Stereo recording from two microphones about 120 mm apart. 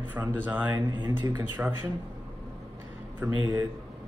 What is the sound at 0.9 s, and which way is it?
Speech, 40° right (ahead or behind).